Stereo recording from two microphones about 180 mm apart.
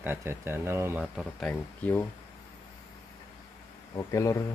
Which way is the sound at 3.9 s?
20° left (ahead or behind).